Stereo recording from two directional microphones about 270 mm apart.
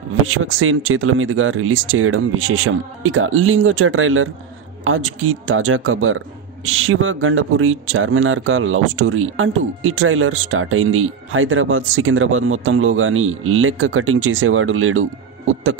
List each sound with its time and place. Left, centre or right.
0.1 s speech: right